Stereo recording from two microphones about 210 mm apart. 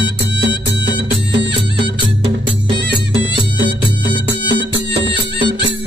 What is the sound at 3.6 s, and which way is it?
Music, 55° right (ahead or behind).